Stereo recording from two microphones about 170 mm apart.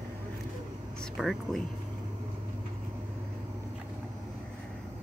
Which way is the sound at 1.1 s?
Centre (ahead or behind).